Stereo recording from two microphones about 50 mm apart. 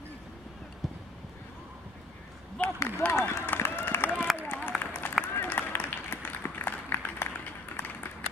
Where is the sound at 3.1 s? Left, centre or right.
Left.